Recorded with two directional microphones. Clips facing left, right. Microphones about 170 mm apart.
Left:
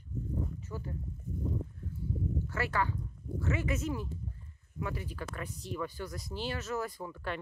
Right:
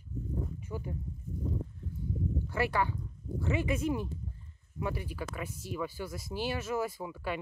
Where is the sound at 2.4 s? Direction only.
15° right (ahead or behind).